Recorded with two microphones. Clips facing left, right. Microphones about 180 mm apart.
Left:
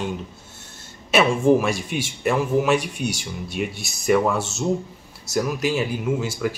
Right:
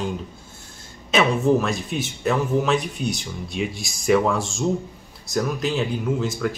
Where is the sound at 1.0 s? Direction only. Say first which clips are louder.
Left 2 dB; 10° left (ahead or behind).